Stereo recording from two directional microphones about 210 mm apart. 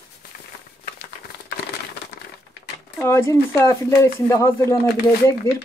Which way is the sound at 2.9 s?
10° left (ahead or behind).